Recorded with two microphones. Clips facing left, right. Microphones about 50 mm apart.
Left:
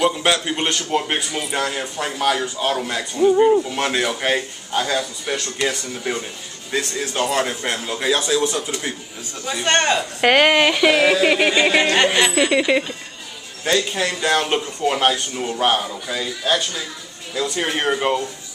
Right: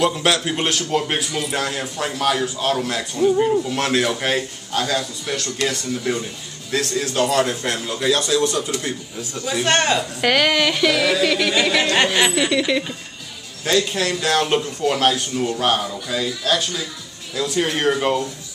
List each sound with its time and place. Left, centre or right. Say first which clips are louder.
0.0 s a man's voice: even; centre
9.3 s a man's voice: even; centre
10.2 s speech: left 4 dB; left
13.7 s a man's voice: even; centre
17.6 s a man's voice: right 2 dB; centre